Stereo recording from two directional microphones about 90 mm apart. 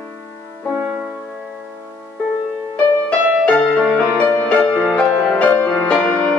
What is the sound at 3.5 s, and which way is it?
Music, 5° left (ahead or behind).